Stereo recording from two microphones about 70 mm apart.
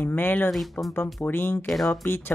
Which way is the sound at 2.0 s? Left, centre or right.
Left.